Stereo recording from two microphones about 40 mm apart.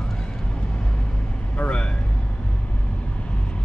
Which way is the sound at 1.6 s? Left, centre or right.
Left.